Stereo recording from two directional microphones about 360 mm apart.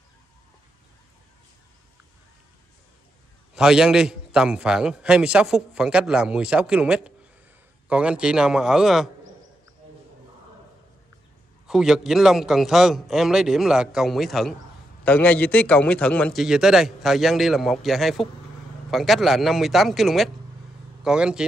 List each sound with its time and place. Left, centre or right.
3.5 s a man's voice: centre
11.6 s a man's voice: centre